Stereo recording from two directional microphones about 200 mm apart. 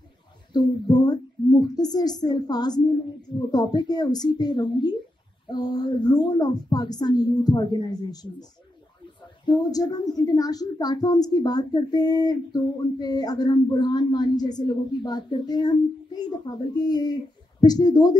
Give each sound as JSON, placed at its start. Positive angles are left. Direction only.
{"t": 0.5, "sound": "speech", "side_deg": 20}
{"t": 9.5, "sound": "speech", "side_deg": 20}